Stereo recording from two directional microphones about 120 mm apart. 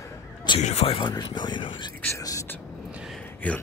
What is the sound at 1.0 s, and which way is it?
Speech, 40° left (ahead or behind).